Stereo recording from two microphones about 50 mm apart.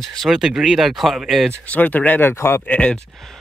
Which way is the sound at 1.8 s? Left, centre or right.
Left.